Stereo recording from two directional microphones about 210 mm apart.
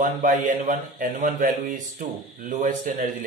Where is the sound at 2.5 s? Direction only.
35° right (ahead or behind).